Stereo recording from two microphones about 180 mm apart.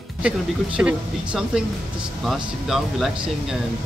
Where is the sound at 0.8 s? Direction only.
5° right (ahead or behind).